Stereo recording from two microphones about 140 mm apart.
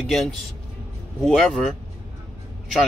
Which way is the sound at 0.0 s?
Centre (ahead or behind).